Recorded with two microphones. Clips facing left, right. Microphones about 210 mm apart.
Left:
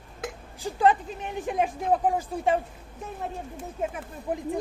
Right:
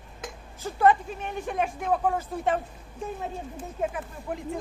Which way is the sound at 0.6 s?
15° left (ahead or behind).